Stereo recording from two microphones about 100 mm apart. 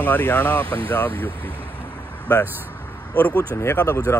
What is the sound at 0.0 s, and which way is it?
Speech, 20° left (ahead or behind).